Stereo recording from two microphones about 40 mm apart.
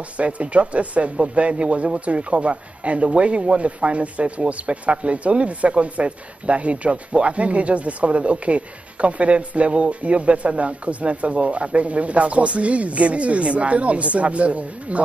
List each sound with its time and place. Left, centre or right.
0.2 s speech: right